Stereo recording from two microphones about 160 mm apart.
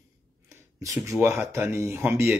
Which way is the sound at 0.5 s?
20° right (ahead or behind).